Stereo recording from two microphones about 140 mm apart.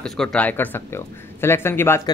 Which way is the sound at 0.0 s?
5° left (ahead or behind).